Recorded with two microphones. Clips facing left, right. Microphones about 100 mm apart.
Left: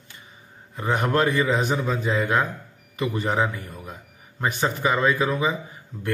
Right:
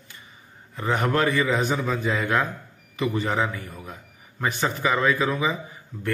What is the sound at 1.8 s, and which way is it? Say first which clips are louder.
Speech: left 1 dB; centre (ahead or behind).